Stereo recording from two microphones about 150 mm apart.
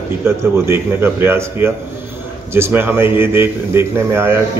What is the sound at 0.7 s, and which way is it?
A man's voice, 15° right (ahead or behind).